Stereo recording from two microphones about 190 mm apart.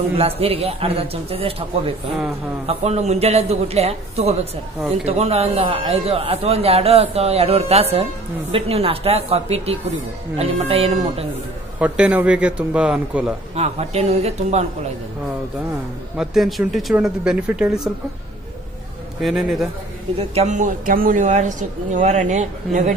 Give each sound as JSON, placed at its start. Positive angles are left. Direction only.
{"t": 0.2, "sound": "a man's voice", "side_deg": -30}
{"t": 2.6, "sound": "a man's voice", "side_deg": -35}
{"t": 11.8, "sound": "a man's voice", "side_deg": -10}
{"t": 13.6, "sound": "a man's voice", "side_deg": -35}
{"t": 16.2, "sound": "speech", "side_deg": 0}
{"t": 19.2, "sound": "speech", "side_deg": 0}
{"t": 20.2, "sound": "a man's voice", "side_deg": -35}